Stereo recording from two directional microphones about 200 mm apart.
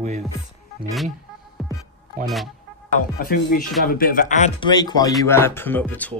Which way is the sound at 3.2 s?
45° left (ahead or behind).